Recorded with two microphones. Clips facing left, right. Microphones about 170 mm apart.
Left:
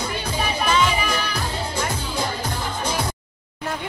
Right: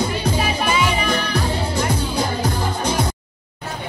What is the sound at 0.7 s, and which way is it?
Music, 10° right (ahead or behind).